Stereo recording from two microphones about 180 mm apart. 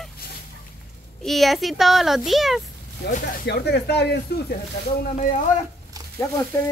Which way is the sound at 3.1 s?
60° left (ahead or behind).